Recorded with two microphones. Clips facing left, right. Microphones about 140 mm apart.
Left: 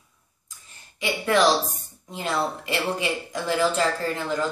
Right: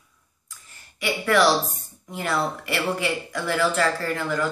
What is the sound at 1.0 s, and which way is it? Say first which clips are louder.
A woman's voice: right 1 dB; 20° left (ahead or behind).